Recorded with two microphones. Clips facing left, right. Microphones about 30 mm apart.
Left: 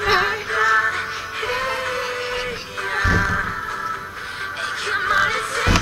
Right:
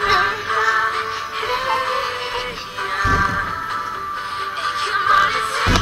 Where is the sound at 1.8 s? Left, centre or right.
Right.